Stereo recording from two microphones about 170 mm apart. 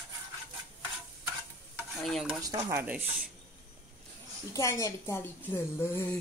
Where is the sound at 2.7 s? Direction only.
10° right (ahead or behind).